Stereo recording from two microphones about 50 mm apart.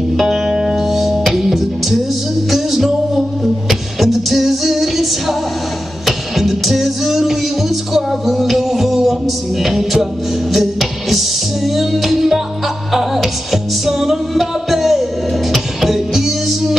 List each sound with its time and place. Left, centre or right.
0.1 s music: centre